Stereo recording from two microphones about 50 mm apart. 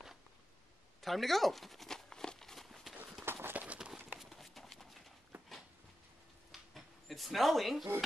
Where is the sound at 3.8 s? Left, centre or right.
Centre.